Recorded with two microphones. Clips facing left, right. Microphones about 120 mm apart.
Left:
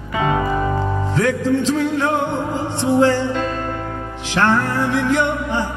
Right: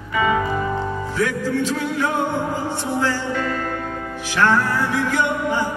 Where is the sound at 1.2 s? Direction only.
25° left (ahead or behind).